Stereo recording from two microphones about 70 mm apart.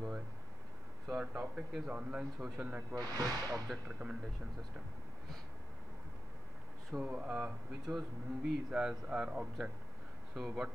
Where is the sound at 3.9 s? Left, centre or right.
Centre.